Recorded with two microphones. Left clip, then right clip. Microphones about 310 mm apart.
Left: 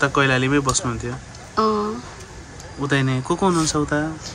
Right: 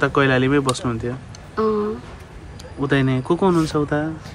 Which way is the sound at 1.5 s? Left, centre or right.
Centre.